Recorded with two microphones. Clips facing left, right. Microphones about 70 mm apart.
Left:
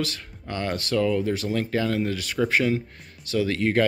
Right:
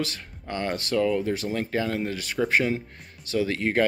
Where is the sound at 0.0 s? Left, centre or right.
Right.